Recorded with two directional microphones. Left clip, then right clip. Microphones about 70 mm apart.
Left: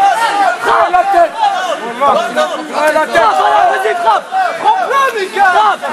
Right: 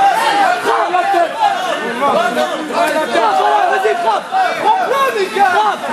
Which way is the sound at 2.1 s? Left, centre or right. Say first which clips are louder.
Left 2 dB; left.